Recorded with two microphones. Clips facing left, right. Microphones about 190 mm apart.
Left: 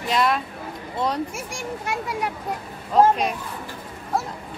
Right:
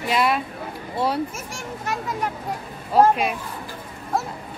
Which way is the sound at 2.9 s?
5° right (ahead or behind).